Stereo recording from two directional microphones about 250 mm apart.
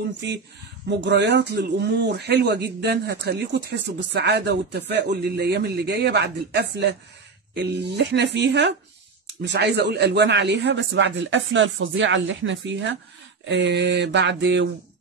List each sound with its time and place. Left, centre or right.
0.8 s speech: right